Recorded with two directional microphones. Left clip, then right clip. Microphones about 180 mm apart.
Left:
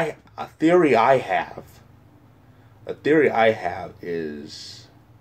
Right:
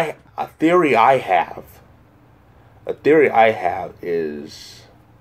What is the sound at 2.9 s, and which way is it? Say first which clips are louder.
Speech: right 4 dB; 5° right (ahead or behind).